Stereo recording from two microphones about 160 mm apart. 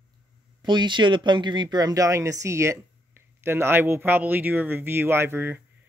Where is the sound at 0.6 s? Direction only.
30° right (ahead or behind).